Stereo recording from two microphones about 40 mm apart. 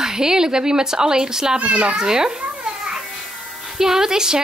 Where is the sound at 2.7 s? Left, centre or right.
Centre.